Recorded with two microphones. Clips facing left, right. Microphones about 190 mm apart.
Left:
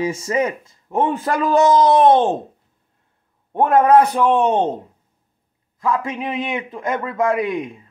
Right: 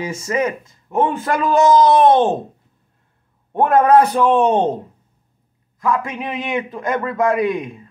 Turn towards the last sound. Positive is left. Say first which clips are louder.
# right 2 dB
turn(degrees=25)  # may be behind; listen again after turning